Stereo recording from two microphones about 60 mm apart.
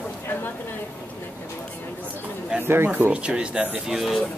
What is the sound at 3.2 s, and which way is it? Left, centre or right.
Speech, centre.